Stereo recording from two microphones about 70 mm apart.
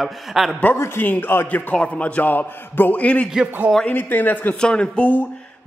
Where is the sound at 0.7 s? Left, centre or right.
Left.